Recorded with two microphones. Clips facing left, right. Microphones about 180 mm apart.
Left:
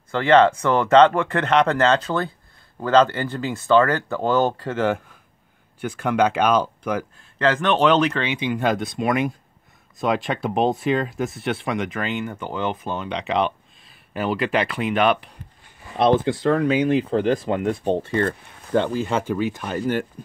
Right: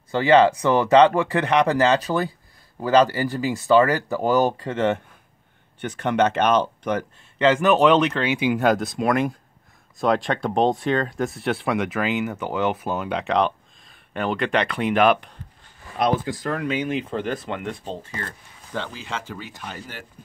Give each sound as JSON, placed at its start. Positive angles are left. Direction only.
{"t": 0.2, "sound": "speech", "side_deg": -15}
{"t": 4.6, "sound": "speech", "side_deg": 5}
{"t": 16.0, "sound": "speech", "side_deg": 30}
{"t": 17.8, "sound": "speech", "side_deg": 60}